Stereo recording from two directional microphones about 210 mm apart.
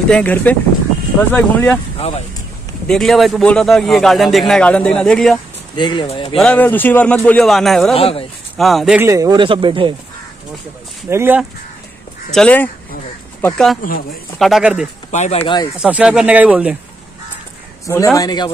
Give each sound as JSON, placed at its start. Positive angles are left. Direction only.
{"t": 0.1, "sound": "speech", "side_deg": 5}
{"t": 2.0, "sound": "speech", "side_deg": 30}
{"t": 2.9, "sound": "a man's voice", "side_deg": 0}
{"t": 5.8, "sound": "speech", "side_deg": 20}
{"t": 6.3, "sound": "a man's voice", "side_deg": 5}
{"t": 7.9, "sound": "speech", "side_deg": 25}
{"t": 8.5, "sound": "a man's voice", "side_deg": 0}
{"t": 9.0, "sound": "speech", "side_deg": -15}
{"t": 11.1, "sound": "speech", "side_deg": -10}
{"t": 12.3, "sound": "a man's voice", "side_deg": 5}
{"t": 15.0, "sound": "speech", "side_deg": 35}
{"t": 15.8, "sound": "a man's voice", "side_deg": -5}
{"t": 17.8, "sound": "speech", "side_deg": 15}